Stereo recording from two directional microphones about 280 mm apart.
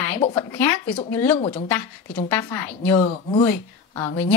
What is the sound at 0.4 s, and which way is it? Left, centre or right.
A woman's voice, centre.